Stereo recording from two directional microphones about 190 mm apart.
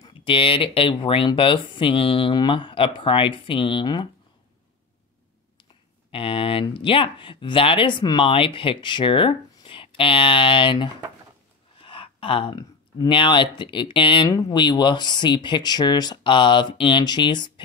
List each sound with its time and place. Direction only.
0.0 s speech: 25° left (ahead or behind)
6.1 s speech: 30° left (ahead or behind)